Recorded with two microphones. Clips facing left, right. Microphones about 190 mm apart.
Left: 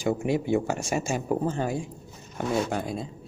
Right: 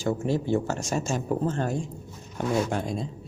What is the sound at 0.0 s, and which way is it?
Speech, 15° left (ahead or behind).